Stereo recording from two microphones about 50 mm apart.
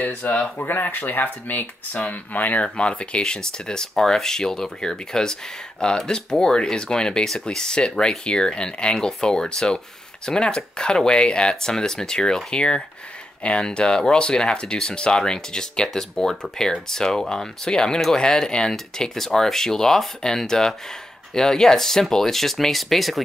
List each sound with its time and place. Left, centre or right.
0.2 s speech: left
0.6 s speech: left
2.8 s speech: centre